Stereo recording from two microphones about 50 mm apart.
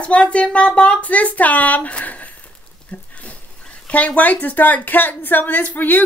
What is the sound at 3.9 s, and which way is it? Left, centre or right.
Speech, left.